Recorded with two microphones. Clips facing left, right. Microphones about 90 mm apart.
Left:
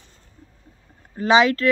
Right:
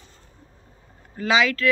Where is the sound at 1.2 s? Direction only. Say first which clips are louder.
Left 4 dB; 35° left (ahead or behind).